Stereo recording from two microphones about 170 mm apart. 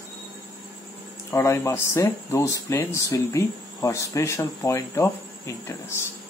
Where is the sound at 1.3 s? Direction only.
15° left (ahead or behind).